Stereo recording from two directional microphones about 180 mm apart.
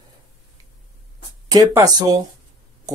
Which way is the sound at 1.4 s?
20° right (ahead or behind).